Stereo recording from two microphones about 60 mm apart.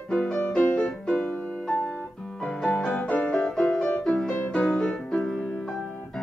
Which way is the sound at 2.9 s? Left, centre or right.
Left.